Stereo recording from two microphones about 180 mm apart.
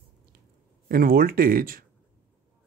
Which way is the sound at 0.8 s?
55° right (ahead or behind).